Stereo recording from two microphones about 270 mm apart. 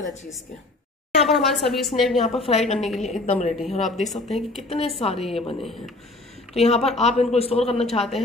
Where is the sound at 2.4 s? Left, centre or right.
Left.